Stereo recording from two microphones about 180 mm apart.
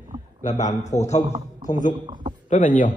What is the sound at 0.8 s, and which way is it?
A man's voice, 40° left (ahead or behind).